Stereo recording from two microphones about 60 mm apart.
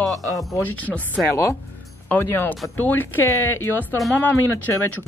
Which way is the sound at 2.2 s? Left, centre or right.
Left.